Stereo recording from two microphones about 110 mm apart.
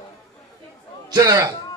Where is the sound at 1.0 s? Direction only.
35° right (ahead or behind).